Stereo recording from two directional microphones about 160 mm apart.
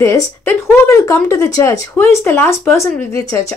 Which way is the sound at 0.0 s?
20° left (ahead or behind).